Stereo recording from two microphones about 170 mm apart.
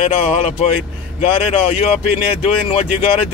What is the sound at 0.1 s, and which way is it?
Speech, 35° left (ahead or behind).